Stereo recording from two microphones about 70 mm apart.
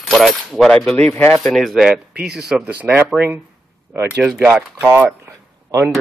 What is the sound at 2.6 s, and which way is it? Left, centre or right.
Speech, right.